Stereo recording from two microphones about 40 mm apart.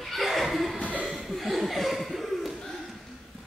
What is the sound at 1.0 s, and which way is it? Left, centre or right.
Chuckle, centre.